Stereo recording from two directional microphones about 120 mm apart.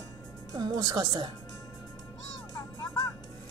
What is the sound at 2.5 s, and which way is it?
Music, 30° left (ahead or behind).